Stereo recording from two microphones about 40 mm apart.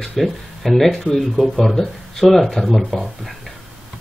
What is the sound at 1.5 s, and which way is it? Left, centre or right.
Speech, centre.